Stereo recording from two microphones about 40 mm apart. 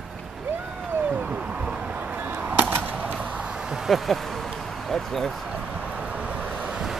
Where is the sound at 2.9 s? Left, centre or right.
Right.